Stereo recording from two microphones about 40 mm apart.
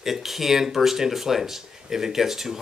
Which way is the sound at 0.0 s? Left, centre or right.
Centre.